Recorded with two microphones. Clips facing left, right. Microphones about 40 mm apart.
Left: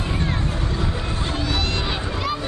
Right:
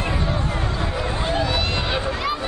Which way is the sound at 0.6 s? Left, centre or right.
Right.